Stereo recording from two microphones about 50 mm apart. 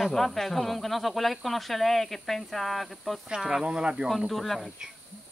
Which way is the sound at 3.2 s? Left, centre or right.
Centre.